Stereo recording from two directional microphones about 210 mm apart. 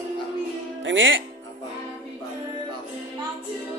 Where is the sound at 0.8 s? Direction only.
65° right (ahead or behind).